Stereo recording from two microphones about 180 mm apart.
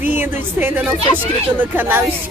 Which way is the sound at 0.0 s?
10° right (ahead or behind).